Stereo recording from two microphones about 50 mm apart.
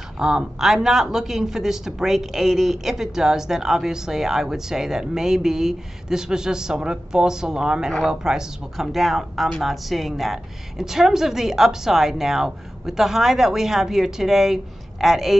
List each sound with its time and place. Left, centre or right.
0.2 s speech: centre